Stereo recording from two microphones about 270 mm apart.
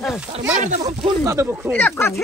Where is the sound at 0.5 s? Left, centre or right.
Right.